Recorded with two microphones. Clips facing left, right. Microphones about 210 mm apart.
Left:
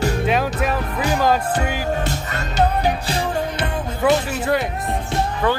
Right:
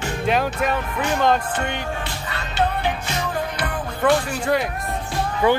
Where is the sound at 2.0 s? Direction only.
45° left (ahead or behind); by 3.8 s 25° left (ahead or behind).